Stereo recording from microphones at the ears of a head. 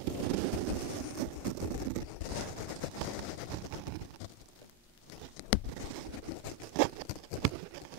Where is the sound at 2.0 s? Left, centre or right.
Left.